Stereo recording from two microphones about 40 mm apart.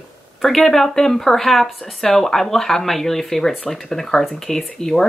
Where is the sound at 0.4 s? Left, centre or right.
Centre.